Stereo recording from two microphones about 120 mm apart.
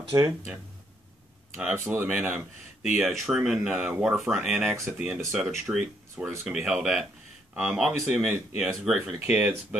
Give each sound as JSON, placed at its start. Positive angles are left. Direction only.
{"t": 0.1, "sound": "speech", "side_deg": -30}
{"t": 1.6, "sound": "speech", "side_deg": -5}
{"t": 3.0, "sound": "speech", "side_deg": 0}
{"t": 9.2, "sound": "speech", "side_deg": -15}